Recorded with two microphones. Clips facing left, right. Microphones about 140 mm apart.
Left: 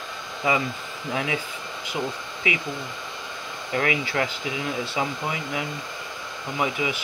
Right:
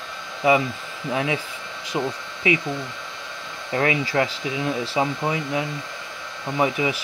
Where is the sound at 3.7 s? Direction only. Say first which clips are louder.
Right 3 dB; 25° right (ahead or behind).